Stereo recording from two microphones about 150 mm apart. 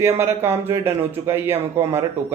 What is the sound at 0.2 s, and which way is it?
Speech, 15° right (ahead or behind).